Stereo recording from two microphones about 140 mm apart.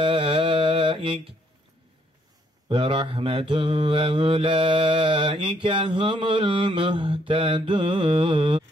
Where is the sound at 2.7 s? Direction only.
35° right (ahead or behind).